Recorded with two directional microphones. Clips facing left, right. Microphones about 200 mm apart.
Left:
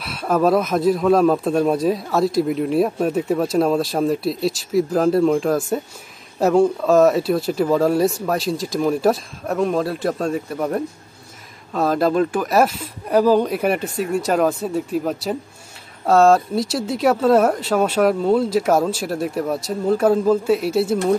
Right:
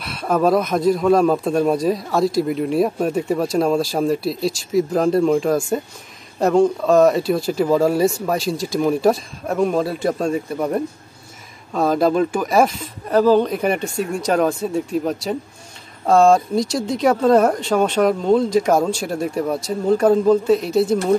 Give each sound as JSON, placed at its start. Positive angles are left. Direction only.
{"t": 0.0, "sound": "speech", "side_deg": 0}